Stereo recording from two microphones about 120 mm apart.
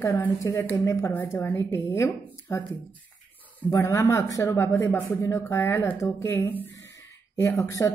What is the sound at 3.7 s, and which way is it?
Speech, 25° left (ahead or behind).